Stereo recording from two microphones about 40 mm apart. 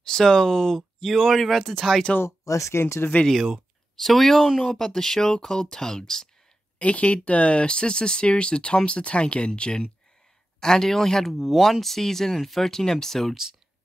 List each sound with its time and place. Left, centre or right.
0.0 s speech: centre
2.7 s speech: left
3.9 s speech: centre
6.8 s speech: left; by 13.3 s centre